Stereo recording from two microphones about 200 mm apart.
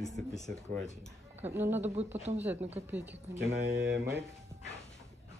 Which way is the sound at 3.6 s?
55° right (ahead or behind).